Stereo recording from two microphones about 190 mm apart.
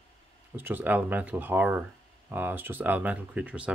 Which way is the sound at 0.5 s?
10° right (ahead or behind).